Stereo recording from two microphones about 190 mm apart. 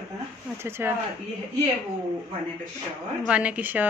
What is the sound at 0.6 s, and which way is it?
Speech, 10° right (ahead or behind).